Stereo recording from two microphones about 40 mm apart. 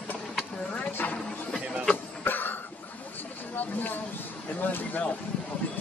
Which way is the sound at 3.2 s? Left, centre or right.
Left.